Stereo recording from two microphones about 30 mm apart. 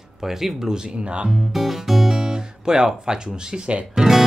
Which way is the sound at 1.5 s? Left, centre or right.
Centre.